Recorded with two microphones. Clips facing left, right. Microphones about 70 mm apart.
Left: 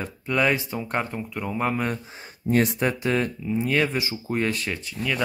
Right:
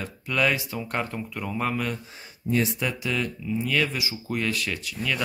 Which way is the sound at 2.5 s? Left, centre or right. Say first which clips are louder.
Left 4 dB; left.